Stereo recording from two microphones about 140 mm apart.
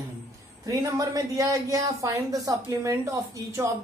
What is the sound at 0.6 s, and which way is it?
Speech, 25° right (ahead or behind).